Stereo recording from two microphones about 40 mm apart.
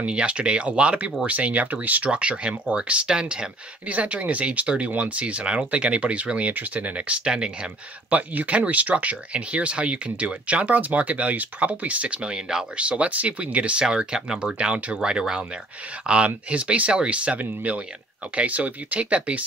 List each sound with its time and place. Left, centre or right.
0.0 s speech: right
2.0 s speech: right
3.9 s speech: right
7.2 s speech: right
8.1 s speech: right
12.2 s speech: centre
12.7 s speech: right
13.8 s speech: centre
16.3 s speech: right